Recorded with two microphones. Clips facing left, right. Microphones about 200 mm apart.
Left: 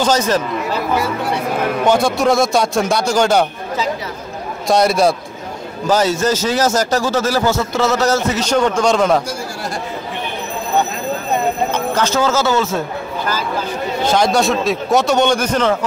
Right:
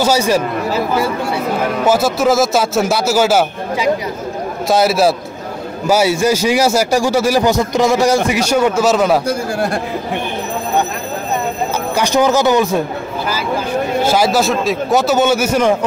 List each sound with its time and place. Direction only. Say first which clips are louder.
0.0 s a man's voice: right 2 dB; 10° right (ahead or behind)
1.9 s a man's voice: right 1 dB; 5° right (ahead or behind)
9.3 s speech: right 7 dB; 55° right (ahead or behind)
11.9 s a man's voice: right 5 dB; 15° right (ahead or behind)
14.0 s a man's voice: left 1 dB; 5° right (ahead or behind)